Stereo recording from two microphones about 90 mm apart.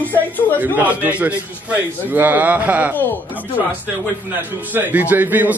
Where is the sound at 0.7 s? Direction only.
20° right (ahead or behind).